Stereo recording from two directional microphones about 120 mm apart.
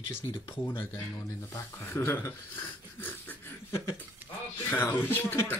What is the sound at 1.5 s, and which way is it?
Speech, 20° left (ahead or behind).